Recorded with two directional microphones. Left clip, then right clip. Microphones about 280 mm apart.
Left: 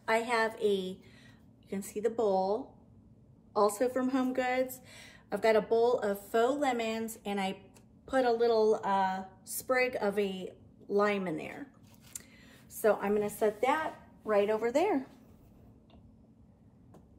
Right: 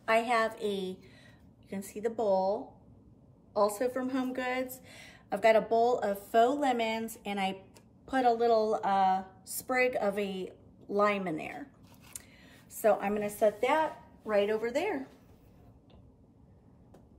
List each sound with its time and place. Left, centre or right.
0.0 s a woman's voice: centre
2.0 s a woman's voice: centre
12.1 s a sound: centre
14.2 s a woman's voice: centre